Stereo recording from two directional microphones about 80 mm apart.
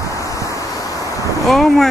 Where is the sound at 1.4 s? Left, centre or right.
Centre.